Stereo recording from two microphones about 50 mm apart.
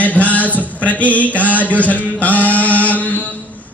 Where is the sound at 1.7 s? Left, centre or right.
Left.